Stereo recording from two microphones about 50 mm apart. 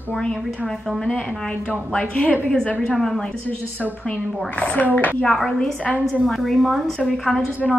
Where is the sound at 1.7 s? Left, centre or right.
Left.